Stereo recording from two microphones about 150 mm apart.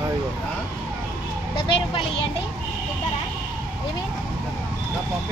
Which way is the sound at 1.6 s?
35° left (ahead or behind).